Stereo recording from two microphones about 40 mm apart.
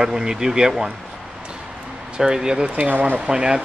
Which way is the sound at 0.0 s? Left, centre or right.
Centre.